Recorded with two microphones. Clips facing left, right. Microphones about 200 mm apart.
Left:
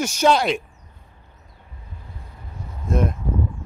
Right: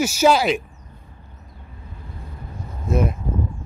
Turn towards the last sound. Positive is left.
turn(degrees=-5)  # may be behind; listen again after turning